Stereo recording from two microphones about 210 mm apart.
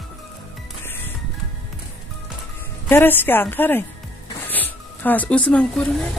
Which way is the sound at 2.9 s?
10° left (ahead or behind).